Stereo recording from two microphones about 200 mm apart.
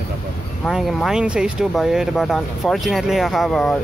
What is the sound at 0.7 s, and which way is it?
Speech, centre (ahead or behind).